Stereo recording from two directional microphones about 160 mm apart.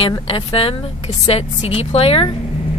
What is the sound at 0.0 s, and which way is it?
A woman's voice, 35° left (ahead or behind).